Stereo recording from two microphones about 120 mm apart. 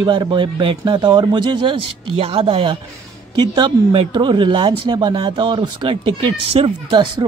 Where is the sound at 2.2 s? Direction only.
50° right (ahead or behind).